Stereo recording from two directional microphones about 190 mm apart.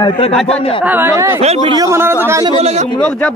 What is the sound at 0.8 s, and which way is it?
A man's voice, 10° right (ahead or behind).